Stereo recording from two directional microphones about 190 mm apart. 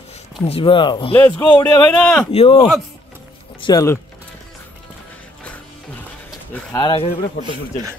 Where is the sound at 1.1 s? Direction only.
10° left (ahead or behind).